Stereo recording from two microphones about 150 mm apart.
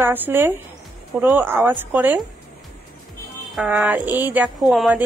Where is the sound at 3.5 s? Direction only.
5° right (ahead or behind).